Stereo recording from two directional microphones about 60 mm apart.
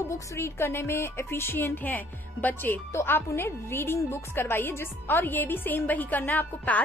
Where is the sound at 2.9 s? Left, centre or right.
Left.